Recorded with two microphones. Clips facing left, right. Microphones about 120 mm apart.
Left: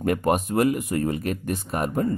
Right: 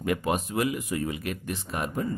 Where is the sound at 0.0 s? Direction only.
50° left (ahead or behind).